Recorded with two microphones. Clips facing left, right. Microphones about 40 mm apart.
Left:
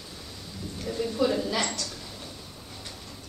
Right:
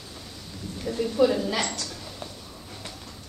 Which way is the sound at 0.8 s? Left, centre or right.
Centre.